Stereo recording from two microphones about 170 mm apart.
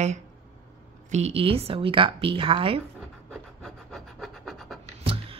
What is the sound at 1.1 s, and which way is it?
Speech, 40° right (ahead or behind).